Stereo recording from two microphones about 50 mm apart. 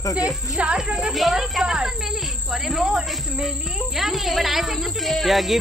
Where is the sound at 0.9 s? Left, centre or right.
Centre.